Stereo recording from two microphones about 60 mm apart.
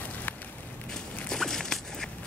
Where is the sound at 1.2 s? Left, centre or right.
Centre.